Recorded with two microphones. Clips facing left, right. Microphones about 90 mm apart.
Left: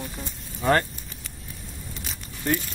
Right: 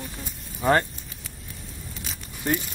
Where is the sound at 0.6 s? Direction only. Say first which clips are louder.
Right 1 dB; 15° right (ahead or behind).